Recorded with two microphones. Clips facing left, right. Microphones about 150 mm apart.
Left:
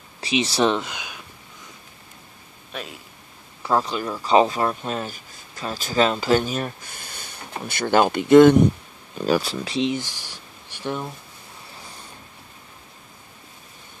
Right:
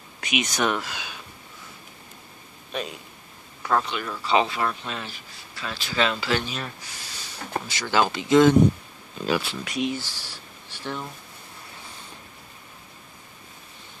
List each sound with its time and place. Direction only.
0.2 s speech: 30° left (ahead or behind); by 1.2 s 15° left (ahead or behind)
2.7 s speech: centre (ahead or behind)
3.6 s speech: 35° left (ahead or behind); by 8.5 s 55° left (ahead or behind)
9.2 s speech: 40° left (ahead or behind)
9.8 s speech: 20° left (ahead or behind)